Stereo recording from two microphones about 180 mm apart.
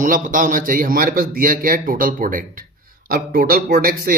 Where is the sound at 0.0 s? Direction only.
45° right (ahead or behind).